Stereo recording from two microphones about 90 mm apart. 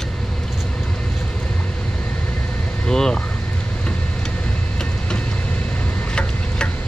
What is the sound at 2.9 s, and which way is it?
Vehicle, 5° left (ahead or behind).